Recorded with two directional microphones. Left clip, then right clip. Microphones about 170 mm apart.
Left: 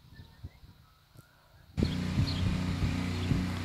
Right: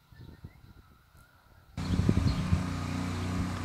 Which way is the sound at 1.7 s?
40° right (ahead or behind).